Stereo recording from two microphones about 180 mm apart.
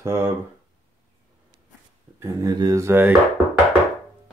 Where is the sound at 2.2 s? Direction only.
20° right (ahead or behind).